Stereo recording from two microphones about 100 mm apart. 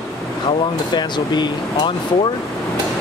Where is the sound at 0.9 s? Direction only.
50° left (ahead or behind).